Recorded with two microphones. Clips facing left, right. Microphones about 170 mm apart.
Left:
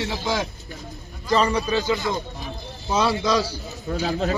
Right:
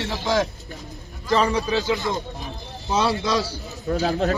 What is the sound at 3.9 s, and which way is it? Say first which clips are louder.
Speech: right 3 dB; 40° right (ahead or behind).